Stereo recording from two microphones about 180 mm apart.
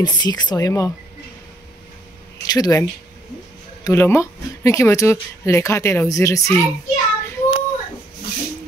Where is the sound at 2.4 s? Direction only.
20° left (ahead or behind).